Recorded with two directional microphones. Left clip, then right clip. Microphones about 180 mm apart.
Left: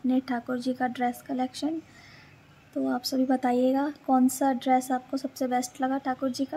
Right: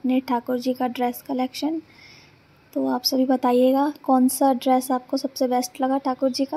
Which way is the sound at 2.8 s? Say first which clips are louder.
Right 6 dB; 15° right (ahead or behind).